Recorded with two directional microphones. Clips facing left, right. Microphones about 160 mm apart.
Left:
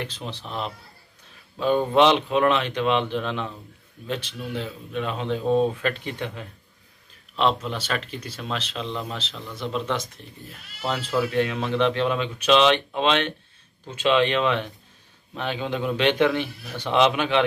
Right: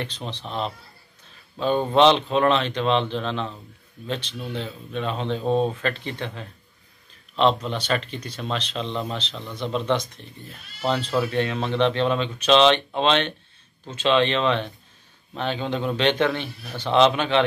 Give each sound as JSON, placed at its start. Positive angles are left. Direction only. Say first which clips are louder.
{"t": 0.0, "sound": "speech", "louder": "right 1 dB", "side_deg": 5}
{"t": 2.0, "sound": "speech", "louder": "right 2 dB", "side_deg": 10}
{"t": 5.4, "sound": "speech", "louder": "left 1 dB", "side_deg": -25}
{"t": 5.8, "sound": "speech", "louder": "even", "side_deg": 10}